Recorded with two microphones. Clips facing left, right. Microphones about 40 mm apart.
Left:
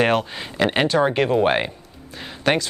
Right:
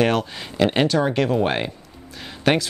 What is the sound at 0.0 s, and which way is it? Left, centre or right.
Speech, centre.